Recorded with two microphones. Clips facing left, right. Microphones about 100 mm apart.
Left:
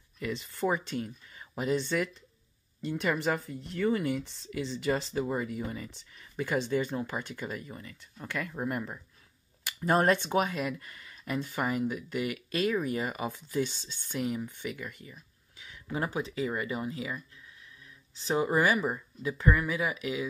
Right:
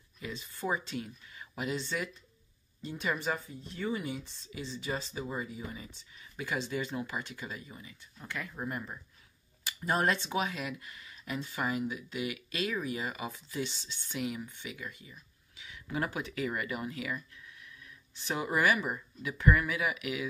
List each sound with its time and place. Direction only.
0.2 s speech: 55° left (ahead or behind)
1.8 s speech: 55° left (ahead or behind)
9.8 s speech: 45° left (ahead or behind)
15.6 s a sound: 40° left (ahead or behind)
16.0 s speech: 30° left (ahead or behind)
18.2 s speech: 30° left (ahead or behind)